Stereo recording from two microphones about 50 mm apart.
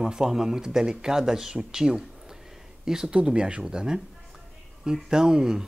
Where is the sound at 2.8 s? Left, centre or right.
Centre.